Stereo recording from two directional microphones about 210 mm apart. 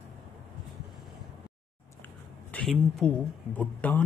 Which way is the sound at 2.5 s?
Centre (ahead or behind).